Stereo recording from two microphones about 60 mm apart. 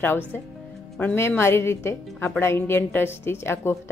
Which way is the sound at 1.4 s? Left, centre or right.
Left.